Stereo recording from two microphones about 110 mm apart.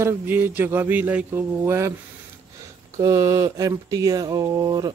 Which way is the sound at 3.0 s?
30° right (ahead or behind).